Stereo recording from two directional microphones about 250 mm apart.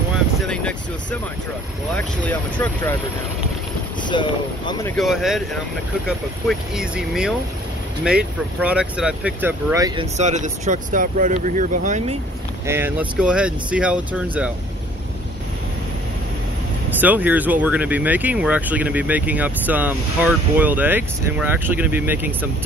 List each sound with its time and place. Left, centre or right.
2.0 s speech: centre
4.1 s speech: centre
4.9 s speech: centre
10.1 s speech: right
12.6 s speech: centre
17.0 s speech: centre